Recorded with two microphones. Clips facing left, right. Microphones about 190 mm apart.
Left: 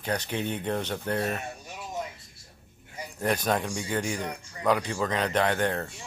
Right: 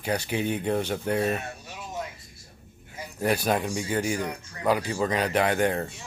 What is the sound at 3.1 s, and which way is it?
Speech, 10° right (ahead or behind).